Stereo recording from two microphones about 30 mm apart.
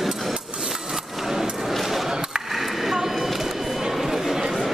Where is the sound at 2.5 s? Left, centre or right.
Centre.